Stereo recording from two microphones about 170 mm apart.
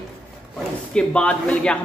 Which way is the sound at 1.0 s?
5° left (ahead or behind).